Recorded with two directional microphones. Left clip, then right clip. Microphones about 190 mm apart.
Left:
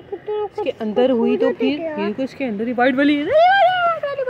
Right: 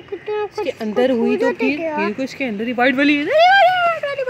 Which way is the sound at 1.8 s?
50° right (ahead or behind).